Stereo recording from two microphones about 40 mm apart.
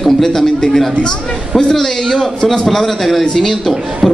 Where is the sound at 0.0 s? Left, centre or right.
Centre.